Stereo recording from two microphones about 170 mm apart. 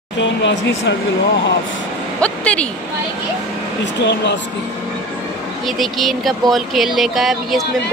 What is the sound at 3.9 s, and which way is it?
Speech, 90° left.